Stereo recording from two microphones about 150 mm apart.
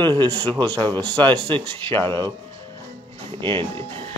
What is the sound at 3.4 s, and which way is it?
Speech, 35° right (ahead or behind).